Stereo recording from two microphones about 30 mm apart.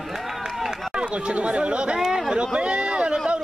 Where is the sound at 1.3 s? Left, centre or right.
Right.